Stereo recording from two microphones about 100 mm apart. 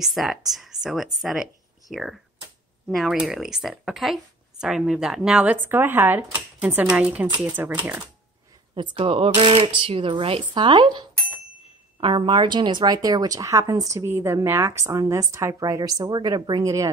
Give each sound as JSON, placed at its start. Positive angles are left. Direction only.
{"t": 0.0, "sound": "speech", "side_deg": 0}
{"t": 5.6, "sound": "speech", "side_deg": -20}
{"t": 8.7, "sound": "speech", "side_deg": -55}
{"t": 16.6, "sound": "speech", "side_deg": -35}